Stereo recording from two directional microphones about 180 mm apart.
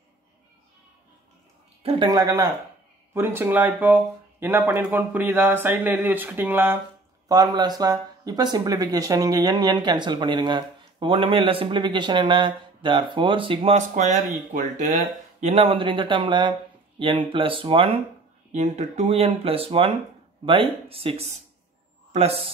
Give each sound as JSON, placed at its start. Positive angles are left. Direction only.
{"t": 1.8, "sound": "speech", "side_deg": -35}
{"t": 2.0, "sound": "speech", "side_deg": -20}
{"t": 7.2, "sound": "speech", "side_deg": -20}